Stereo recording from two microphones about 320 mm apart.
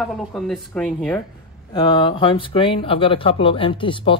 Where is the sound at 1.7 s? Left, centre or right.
Centre.